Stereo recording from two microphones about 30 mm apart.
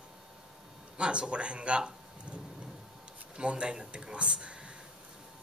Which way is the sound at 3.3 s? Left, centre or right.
Right.